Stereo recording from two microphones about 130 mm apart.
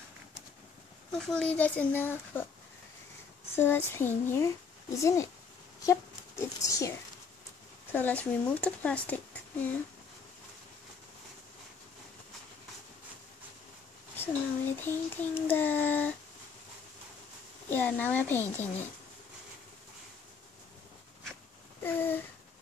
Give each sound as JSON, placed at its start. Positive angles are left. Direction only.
{"t": 1.1, "sound": "child singing", "side_deg": 5}
{"t": 3.5, "sound": "child singing", "side_deg": 15}
{"t": 4.9, "sound": "speech", "side_deg": 25}
{"t": 7.9, "sound": "child singing", "side_deg": 15}
{"t": 14.1, "sound": "child singing", "side_deg": 15}
{"t": 17.6, "sound": "child singing", "side_deg": 15}
{"t": 21.8, "sound": "child singing", "side_deg": 15}